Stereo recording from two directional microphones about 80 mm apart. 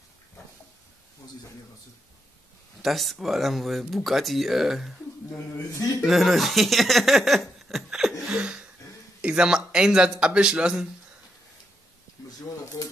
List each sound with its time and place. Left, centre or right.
2.8 s speech: centre
5.7 s a man's voice: left
6.0 s speech: centre
8.4 s a sound: centre
9.2 s speech: centre